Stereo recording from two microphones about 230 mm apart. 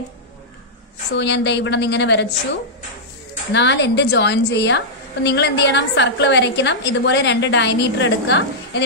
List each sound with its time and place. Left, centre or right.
1.1 s a woman's voice: left
3.5 s a woman's voice: left